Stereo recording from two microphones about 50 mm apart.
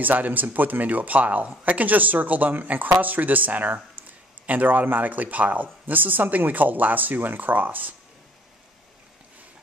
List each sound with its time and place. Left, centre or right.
0.0 s speech: right